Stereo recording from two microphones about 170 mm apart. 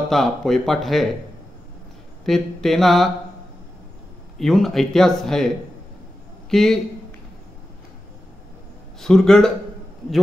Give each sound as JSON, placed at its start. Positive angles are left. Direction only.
{"t": 0.1, "sound": "speech", "side_deg": 0}
{"t": 2.2, "sound": "speech", "side_deg": 0}
{"t": 4.4, "sound": "speech", "side_deg": 0}
{"t": 6.5, "sound": "speech", "side_deg": 5}
{"t": 9.0, "sound": "speech", "side_deg": 5}